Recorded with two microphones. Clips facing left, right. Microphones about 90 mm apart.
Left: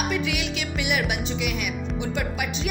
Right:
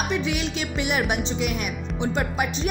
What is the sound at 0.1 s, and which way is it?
Music, 30° right (ahead or behind).